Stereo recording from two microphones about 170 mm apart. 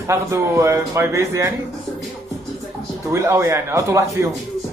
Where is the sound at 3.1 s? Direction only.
15° right (ahead or behind).